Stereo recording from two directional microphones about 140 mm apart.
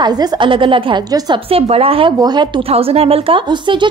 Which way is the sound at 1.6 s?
45° right (ahead or behind).